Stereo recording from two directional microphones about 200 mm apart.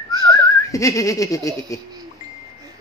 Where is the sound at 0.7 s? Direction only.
15° left (ahead or behind).